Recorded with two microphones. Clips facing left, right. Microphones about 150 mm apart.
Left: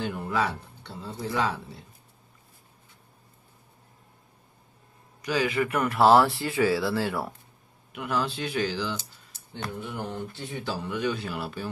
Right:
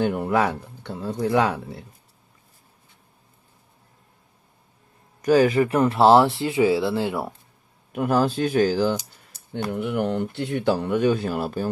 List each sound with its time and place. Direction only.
0.0 s speech: 60° right (ahead or behind)
5.2 s speech: 45° right (ahead or behind)
5.6 s speech: 30° right (ahead or behind)
7.9 s speech: 45° right (ahead or behind)
9.7 s speech: 70° right (ahead or behind); by 11.7 s 45° right (ahead or behind)